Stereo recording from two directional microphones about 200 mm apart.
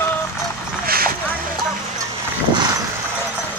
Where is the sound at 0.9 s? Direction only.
50° right (ahead or behind).